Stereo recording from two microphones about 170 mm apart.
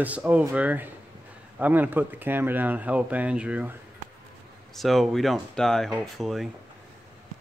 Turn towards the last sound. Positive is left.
turn(degrees=0)  # may be behind; listen again after turning